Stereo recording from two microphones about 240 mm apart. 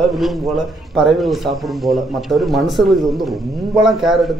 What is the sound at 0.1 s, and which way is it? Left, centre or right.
Speech, centre.